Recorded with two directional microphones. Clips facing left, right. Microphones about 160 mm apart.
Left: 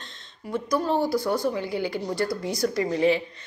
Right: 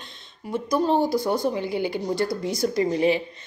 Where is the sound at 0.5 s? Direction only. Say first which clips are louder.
Right 3 dB; 20° right (ahead or behind).